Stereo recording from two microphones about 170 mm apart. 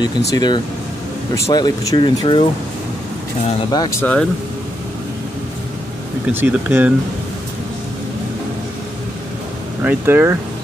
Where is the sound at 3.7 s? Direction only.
25° left (ahead or behind).